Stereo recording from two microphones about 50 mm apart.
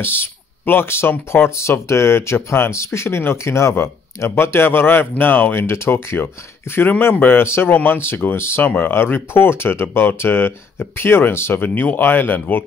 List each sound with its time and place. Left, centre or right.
0.0 s speech: left
1.3 s speech: left
4.2 s speech: left
7.2 s speech: left
7.4 s speech: left
7.7 s speech: left
8.4 s speech: left
8.6 s speech: left
11.6 s speech: left